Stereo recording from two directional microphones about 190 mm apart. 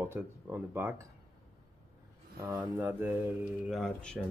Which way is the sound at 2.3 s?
10° right (ahead or behind).